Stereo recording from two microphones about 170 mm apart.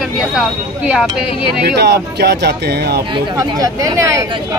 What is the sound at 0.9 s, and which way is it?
Speech, 5° right (ahead or behind).